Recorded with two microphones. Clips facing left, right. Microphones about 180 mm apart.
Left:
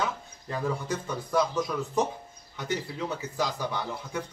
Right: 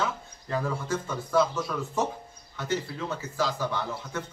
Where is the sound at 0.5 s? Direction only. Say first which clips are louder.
Right 1 dB; 15° left (ahead or behind).